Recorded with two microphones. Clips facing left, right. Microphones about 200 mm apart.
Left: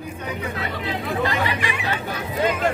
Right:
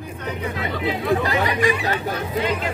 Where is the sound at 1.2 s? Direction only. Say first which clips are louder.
Right 3 dB; 40° right (ahead or behind).